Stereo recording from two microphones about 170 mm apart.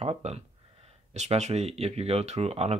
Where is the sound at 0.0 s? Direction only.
40° right (ahead or behind).